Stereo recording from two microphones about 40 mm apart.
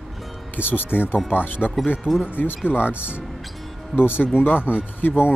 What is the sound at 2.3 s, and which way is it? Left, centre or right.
Speech, left.